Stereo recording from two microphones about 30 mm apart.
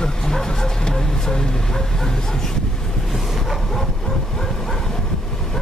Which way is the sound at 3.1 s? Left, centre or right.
Centre.